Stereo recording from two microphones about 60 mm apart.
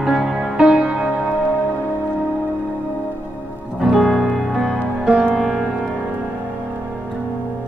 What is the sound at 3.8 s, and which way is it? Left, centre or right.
Music, centre.